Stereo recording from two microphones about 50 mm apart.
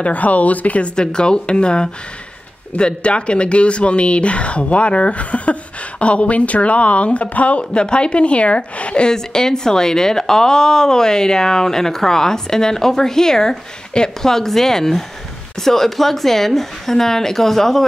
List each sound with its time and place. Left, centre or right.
0.0 s speech: left
0.9 s a woman's voice: centre